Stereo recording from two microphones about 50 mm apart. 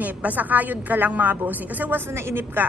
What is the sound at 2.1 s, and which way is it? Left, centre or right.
Speech, right.